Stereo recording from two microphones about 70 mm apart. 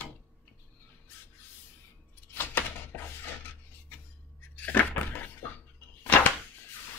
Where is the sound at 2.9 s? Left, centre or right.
Left.